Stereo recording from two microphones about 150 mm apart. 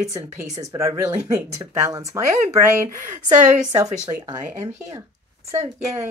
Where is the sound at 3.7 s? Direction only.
25° right (ahead or behind).